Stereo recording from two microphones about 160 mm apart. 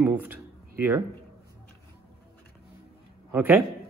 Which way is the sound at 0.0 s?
10° right (ahead or behind).